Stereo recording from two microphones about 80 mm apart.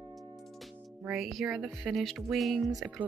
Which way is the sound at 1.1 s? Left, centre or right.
Centre.